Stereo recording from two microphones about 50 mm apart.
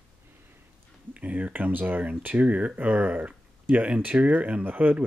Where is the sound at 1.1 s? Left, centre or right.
Right.